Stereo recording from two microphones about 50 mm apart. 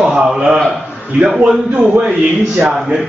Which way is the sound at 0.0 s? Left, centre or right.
Centre.